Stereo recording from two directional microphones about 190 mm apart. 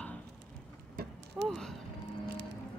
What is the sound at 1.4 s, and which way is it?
Speech, 70° right (ahead or behind).